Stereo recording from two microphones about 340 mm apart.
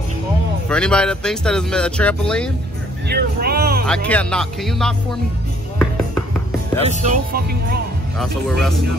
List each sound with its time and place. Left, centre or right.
0.7 s speech: centre
3.1 s boat: right
3.8 s speech: centre
6.8 s speech: right
8.2 s speech: centre